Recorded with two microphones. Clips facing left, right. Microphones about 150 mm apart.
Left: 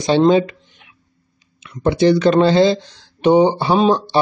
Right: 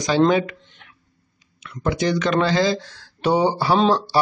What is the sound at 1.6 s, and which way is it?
Speech, 25° left (ahead or behind).